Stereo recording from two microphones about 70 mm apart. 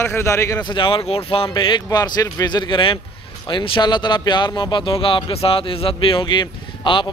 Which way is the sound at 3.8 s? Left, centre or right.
Left.